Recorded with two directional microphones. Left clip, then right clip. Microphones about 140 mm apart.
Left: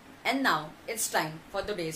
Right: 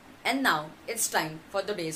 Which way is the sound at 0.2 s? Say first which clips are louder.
Right 1 dB; 20° right (ahead or behind).